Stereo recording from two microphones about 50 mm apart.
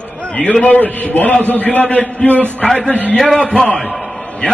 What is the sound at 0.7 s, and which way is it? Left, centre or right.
A man's voice, left.